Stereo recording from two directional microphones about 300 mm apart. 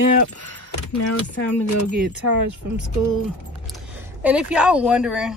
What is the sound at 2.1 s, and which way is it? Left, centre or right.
Speech, right.